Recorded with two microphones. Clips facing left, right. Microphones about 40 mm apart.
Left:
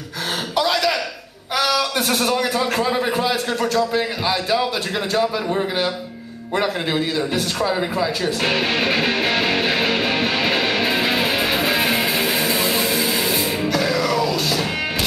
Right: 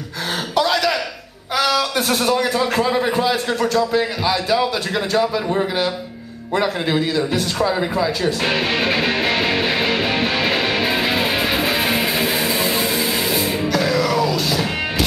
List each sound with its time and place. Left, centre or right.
0.6 s a sound: centre
1.6 s a man's voice: centre
8.5 s music: centre